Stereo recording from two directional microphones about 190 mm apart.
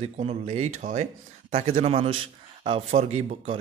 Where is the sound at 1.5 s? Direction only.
30° right (ahead or behind).